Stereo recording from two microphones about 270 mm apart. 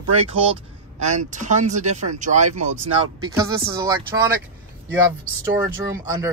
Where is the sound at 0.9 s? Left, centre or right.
Right.